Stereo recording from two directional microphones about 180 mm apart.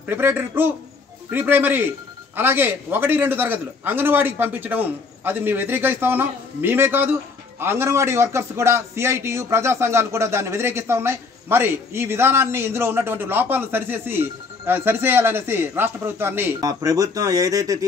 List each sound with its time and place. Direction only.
0.0 s a man's voice: 10° right (ahead or behind)